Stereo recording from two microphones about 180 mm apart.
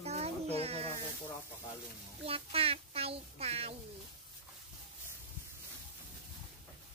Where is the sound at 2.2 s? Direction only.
30° right (ahead or behind).